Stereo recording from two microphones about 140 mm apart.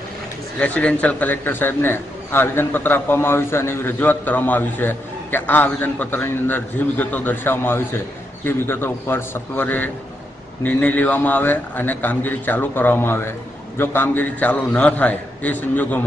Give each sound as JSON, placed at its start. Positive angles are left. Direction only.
{"t": 0.6, "sound": "a man's voice", "side_deg": 10}